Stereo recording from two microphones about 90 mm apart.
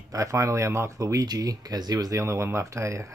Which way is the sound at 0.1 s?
40° right (ahead or behind).